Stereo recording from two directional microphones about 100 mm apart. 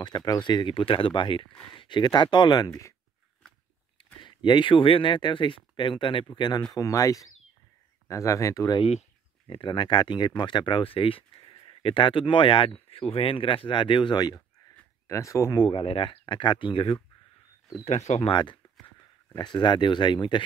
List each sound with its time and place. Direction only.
0.0 s speech: 45° left (ahead or behind)
4.0 s speech: 55° left (ahead or behind)
6.7 s speech: 35° left (ahead or behind)
9.5 s speech: 55° left (ahead or behind)
15.0 s speech: 30° left (ahead or behind)
15.6 s speech: 65° left (ahead or behind)
17.8 s speech: 90° left
18.3 s speech: 50° left (ahead or behind)